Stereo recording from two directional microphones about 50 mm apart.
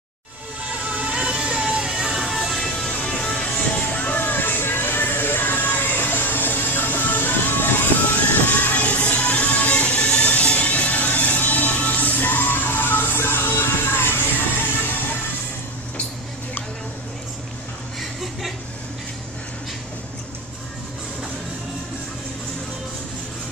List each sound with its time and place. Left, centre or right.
0.7 s music: right; by 2.7 s centre
2.9 s music: centre
4.2 s music: left
8.5 s music: left